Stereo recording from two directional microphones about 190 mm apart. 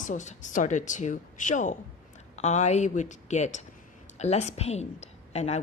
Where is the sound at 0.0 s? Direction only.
40° left (ahead or behind).